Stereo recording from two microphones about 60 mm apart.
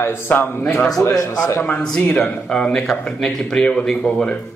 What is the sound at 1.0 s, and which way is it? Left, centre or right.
Speech, left.